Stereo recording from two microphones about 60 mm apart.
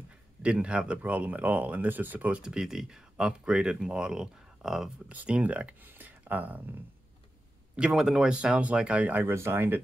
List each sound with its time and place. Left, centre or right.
0.4 s speech: centre
5.0 s speech: right
7.9 s speech: centre; by 9.3 s right
9.3 s speech: right